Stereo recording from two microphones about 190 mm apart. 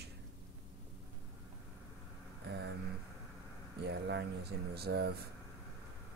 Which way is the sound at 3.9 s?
65° right (ahead or behind).